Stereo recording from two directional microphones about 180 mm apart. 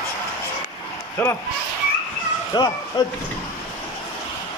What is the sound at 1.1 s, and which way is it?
Speech, 15° left (ahead or behind).